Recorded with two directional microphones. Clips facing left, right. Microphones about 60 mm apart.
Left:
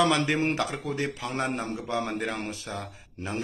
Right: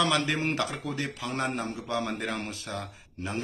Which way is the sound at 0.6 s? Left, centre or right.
Centre.